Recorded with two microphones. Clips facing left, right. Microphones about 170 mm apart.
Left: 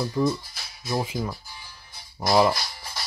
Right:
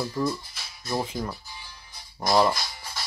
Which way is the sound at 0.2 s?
20° left (ahead or behind).